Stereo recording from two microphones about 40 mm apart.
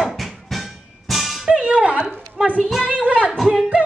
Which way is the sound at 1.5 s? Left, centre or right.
Centre.